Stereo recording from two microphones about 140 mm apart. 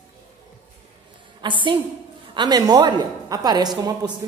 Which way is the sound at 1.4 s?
35° right (ahead or behind).